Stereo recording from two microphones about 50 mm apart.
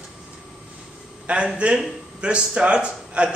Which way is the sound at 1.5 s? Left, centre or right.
Right.